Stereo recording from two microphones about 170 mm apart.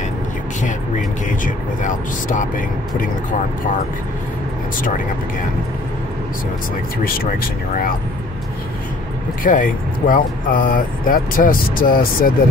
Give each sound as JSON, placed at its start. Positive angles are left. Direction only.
{"t": 1.4, "sound": "speech", "side_deg": 50}
{"t": 9.4, "sound": "speech", "side_deg": 55}